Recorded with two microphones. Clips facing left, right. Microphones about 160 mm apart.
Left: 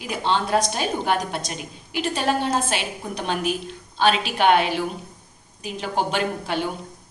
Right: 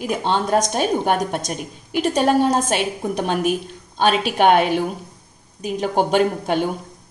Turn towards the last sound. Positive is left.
turn(degrees=-50)  # may be behind; listen again after turning